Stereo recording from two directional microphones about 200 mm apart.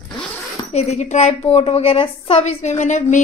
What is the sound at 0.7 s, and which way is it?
A woman's voice, 30° left (ahead or behind).